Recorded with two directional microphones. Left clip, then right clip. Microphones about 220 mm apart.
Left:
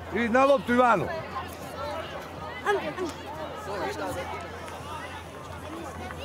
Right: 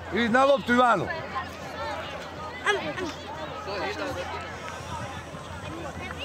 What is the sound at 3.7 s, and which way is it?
Speech, 55° left (ahead or behind).